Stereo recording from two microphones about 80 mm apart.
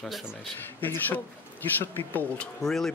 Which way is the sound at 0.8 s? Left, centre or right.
Left.